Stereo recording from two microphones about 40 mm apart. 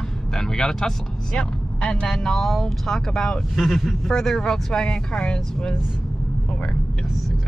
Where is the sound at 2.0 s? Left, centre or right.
Centre.